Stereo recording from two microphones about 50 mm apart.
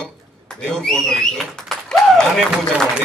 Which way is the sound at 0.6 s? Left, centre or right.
Centre.